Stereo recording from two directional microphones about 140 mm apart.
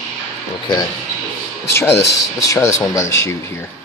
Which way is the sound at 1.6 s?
20° left (ahead or behind).